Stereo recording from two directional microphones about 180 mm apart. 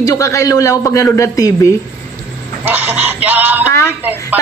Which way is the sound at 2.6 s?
10° right (ahead or behind).